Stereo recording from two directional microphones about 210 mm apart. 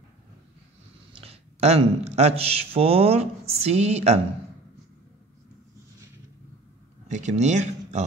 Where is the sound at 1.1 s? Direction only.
30° right (ahead or behind).